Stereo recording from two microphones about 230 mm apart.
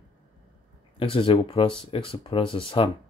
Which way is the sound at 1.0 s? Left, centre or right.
Left.